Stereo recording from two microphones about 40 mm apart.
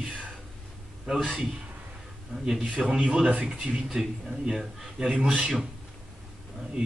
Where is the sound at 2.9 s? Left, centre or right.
Centre.